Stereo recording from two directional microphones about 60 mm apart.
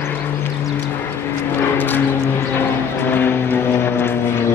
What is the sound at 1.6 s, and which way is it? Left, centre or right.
Vehicle, left.